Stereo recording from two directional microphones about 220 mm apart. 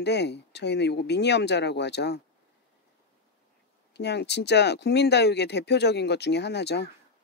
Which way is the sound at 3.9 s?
50° left (ahead or behind).